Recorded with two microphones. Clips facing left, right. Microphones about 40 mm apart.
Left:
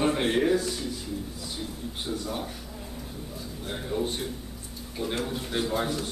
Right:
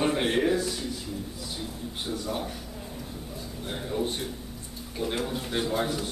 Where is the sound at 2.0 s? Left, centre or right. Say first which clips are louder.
Right 1 dB; centre.